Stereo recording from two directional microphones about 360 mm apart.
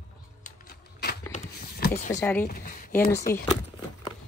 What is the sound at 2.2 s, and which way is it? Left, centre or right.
Speech, centre.